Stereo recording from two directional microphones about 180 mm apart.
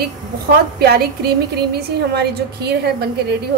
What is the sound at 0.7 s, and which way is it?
A woman's voice, 60° right (ahead or behind).